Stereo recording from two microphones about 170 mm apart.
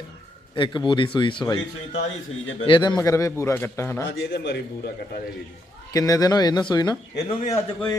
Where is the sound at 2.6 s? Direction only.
30° left (ahead or behind).